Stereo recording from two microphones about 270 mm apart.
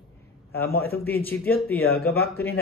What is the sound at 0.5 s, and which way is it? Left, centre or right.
Speech, left.